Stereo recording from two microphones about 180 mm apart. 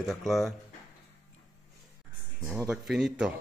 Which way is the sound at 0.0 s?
Centre (ahead or behind).